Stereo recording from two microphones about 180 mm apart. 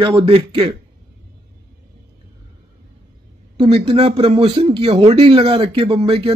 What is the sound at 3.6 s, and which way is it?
Speech, 30° right (ahead or behind).